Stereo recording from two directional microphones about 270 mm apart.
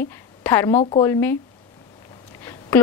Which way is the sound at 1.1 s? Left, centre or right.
Centre.